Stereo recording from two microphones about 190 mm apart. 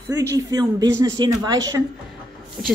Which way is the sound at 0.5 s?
20° right (ahead or behind).